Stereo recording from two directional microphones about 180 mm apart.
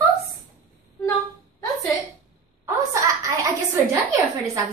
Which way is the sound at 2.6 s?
15° right (ahead or behind).